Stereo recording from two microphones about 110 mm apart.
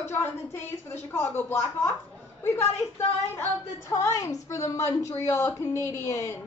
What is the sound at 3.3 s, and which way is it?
A woman's voice, 25° left (ahead or behind).